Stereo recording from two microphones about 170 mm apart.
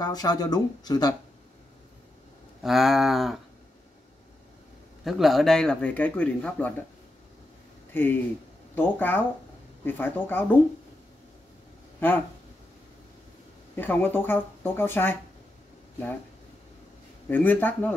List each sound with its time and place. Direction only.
0.0 s speech: 20° left (ahead or behind)
2.6 s speech: centre (ahead or behind)
5.0 s speech: centre (ahead or behind)
7.9 s speech: 10° left (ahead or behind)
13.7 s speech: 10° left (ahead or behind)
17.3 s speech: 10° left (ahead or behind)